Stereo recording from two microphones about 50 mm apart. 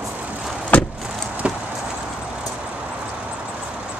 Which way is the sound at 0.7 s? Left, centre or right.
Left.